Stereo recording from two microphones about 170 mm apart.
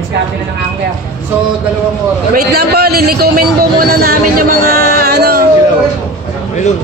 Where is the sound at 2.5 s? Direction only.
65° right (ahead or behind).